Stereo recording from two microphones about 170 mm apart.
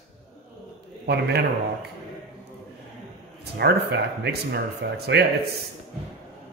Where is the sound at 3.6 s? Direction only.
75° right (ahead or behind).